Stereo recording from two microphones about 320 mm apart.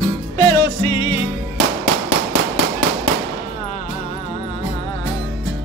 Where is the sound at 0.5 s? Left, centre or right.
Centre.